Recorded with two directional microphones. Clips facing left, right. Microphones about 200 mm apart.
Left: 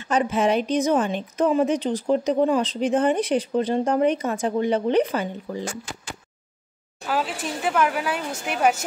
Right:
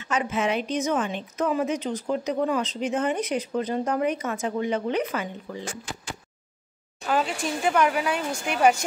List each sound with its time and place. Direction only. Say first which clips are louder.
0.0 s a woman's voice: left 5 dB; 35° left (ahead or behind)
7.1 s speech: right 1 dB; 5° left (ahead or behind)